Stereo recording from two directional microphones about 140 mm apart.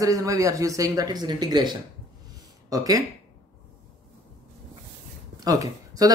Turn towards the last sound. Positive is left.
turn(degrees=-25)  # may be behind; listen again after turning